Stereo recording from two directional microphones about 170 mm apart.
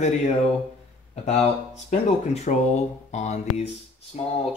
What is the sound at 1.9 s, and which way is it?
Speech, 45° left (ahead or behind).